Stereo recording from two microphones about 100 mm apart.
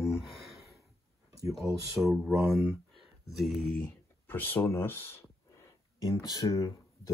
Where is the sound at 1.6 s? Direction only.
30° right (ahead or behind).